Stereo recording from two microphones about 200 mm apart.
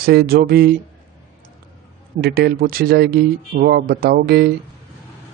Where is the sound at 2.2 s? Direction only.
50° right (ahead or behind).